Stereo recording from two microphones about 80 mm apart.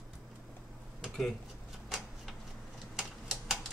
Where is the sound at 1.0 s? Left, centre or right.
Centre.